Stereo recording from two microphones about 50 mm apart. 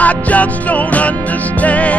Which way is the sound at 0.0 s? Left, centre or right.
Left.